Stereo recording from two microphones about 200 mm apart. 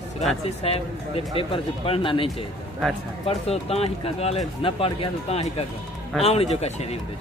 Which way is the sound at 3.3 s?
30° left (ahead or behind).